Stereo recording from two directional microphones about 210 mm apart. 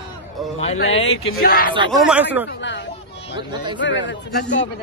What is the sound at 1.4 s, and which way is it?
Speech, 45° left (ahead or behind).